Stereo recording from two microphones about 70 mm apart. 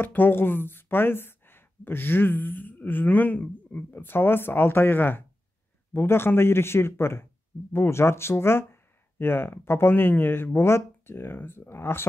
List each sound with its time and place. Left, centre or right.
0.0 s speech: left